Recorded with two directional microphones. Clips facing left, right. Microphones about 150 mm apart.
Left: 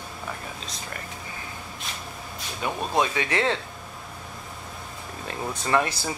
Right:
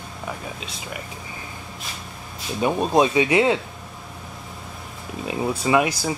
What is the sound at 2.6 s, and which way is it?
Speech, 20° right (ahead or behind).